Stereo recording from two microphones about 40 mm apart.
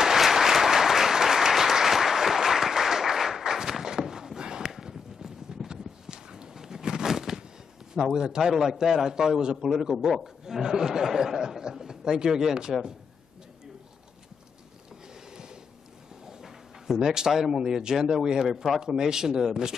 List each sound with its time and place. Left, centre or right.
0.0 s applause: centre
8.1 s a man's voice: right
8.4 s speech: centre
15.3 s a sound: centre
16.3 s speech: centre